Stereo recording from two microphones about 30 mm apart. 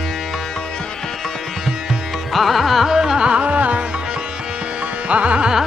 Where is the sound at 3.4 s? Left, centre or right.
Right.